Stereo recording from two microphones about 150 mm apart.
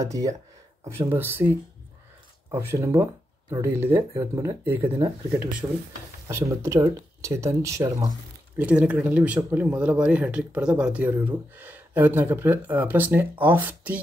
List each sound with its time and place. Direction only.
0.0 s speech: 20° right (ahead or behind)
2.6 s speech: 20° right (ahead or behind)
4.8 s speech: 35° right (ahead or behind)
5.3 s speech: 10° right (ahead or behind)
8.5 s speech: 10° right (ahead or behind)